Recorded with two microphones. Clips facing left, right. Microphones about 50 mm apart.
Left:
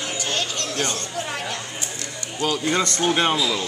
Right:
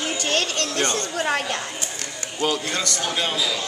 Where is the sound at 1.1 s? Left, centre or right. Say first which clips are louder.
Right 5 dB; right.